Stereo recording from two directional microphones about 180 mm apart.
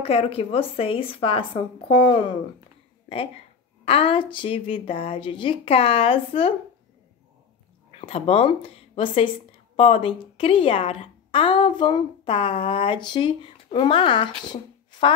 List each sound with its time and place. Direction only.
0.0 s speech: 35° left (ahead or behind)
3.8 s speech: 30° left (ahead or behind)
8.0 s speech: 30° left (ahead or behind)